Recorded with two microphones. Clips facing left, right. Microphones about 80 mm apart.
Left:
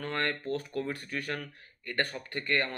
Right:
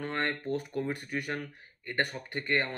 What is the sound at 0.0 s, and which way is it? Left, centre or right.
Speech, right.